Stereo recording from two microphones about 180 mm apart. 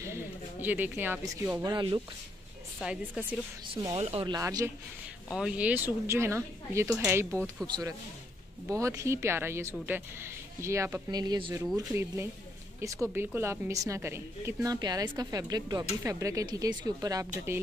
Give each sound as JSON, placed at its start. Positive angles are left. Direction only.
{"t": 0.0, "sound": "a sound", "side_deg": -10}
{"t": 1.6, "sound": "speech", "side_deg": -25}
{"t": 2.8, "sound": "a woman's voice", "side_deg": -5}
{"t": 3.9, "sound": "speech", "side_deg": -35}
{"t": 5.3, "sound": "a woman's voice", "side_deg": -5}
{"t": 7.6, "sound": "a woman's voice", "side_deg": -25}